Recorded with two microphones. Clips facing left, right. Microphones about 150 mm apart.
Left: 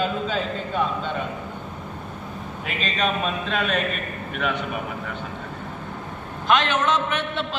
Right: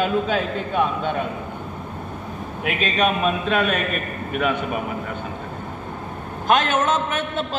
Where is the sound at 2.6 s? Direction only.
60° right (ahead or behind).